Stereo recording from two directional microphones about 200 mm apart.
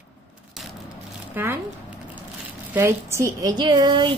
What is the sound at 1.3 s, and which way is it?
Speech, 10° right (ahead or behind).